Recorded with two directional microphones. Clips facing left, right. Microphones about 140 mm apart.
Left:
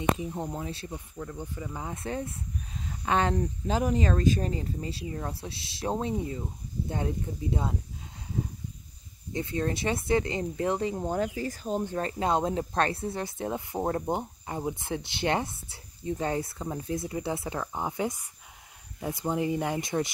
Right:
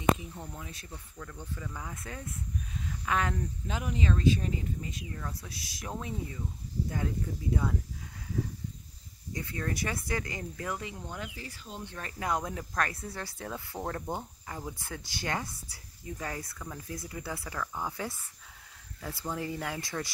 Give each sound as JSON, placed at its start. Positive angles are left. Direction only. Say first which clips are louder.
{"t": 0.2, "sound": "speech", "louder": "left 9 dB", "side_deg": 35}
{"t": 1.7, "sound": "speech", "louder": "left 7 dB", "side_deg": 30}
{"t": 9.3, "sound": "speech", "louder": "left 6 dB", "side_deg": 25}